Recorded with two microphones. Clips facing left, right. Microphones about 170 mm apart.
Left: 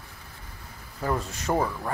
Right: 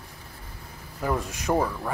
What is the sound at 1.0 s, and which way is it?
Speech, 10° right (ahead or behind).